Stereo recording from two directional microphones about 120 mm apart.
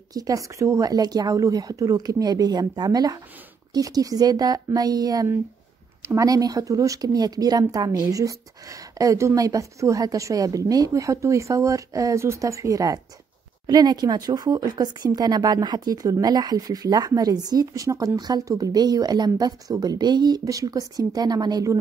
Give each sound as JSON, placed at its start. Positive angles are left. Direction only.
{"t": 0.1, "sound": "a woman's voice", "side_deg": -30}